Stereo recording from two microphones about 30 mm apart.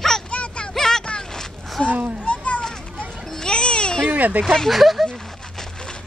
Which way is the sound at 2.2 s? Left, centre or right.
Left.